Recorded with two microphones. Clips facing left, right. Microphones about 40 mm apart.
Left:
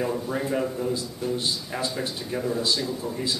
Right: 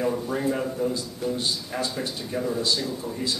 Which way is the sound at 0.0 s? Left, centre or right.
Centre.